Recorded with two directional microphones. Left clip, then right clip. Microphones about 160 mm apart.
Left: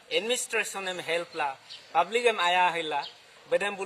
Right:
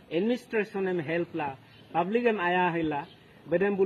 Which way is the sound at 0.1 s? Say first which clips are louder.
Left 1 dB; 15° left (ahead or behind).